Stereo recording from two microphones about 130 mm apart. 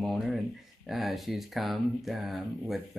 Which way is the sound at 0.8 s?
Centre (ahead or behind).